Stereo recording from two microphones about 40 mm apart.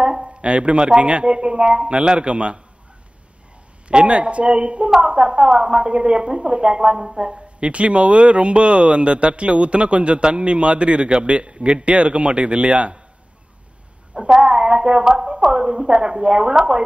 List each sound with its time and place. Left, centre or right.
0.0 s speech: right
3.9 s speech: right
14.1 s speech: centre